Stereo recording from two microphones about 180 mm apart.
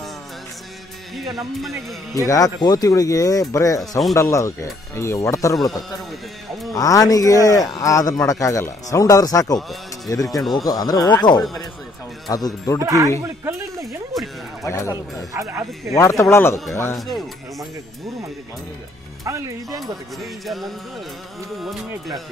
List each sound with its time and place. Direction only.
1.6 s music: centre (ahead or behind)
2.2 s speech: 20° left (ahead or behind)
6.7 s speech: 20° left (ahead or behind)
12.8 s speech: 20° right (ahead or behind)
13.2 s music: 15° right (ahead or behind)
14.1 s music: centre (ahead or behind)
14.9 s speech: 15° right (ahead or behind)
16.0 s speech: 15° left (ahead or behind)
19.2 s speech: 20° right (ahead or behind)
20.2 s music: centre (ahead or behind)